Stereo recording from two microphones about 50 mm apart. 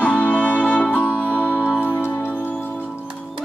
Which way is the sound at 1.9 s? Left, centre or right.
Left.